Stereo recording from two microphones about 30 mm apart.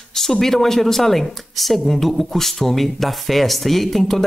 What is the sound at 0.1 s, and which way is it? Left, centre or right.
Speech, centre.